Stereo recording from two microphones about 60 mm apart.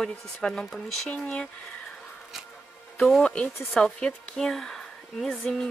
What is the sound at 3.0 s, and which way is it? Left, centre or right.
Speech, centre.